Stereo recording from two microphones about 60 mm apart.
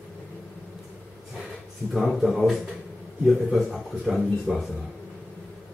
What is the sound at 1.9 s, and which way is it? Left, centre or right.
Speech, centre.